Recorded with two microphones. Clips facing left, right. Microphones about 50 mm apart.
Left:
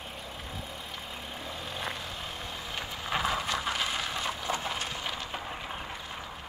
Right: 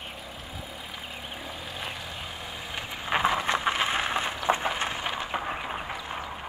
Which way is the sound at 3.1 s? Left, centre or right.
Right.